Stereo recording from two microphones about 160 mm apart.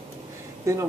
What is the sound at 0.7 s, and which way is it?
Speech, 20° right (ahead or behind).